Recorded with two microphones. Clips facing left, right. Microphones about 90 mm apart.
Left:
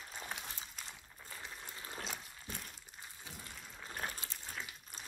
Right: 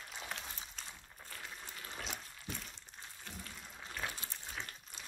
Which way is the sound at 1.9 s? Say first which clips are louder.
Even; 45° left (ahead or behind).